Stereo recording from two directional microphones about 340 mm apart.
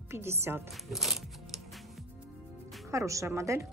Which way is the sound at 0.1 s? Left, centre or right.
Centre.